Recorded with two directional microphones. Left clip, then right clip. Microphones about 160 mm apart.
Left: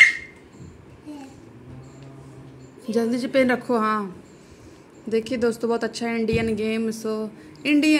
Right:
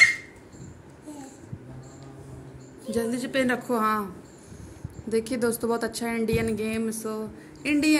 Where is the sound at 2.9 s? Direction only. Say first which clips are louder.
Left 5 dB; 45° left (ahead or behind); by 4.0 s 30° left (ahead or behind).